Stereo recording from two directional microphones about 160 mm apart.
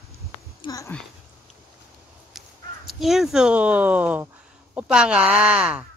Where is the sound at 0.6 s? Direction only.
20° left (ahead or behind).